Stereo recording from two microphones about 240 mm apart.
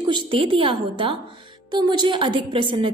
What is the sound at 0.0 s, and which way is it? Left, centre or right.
A woman's voice, centre.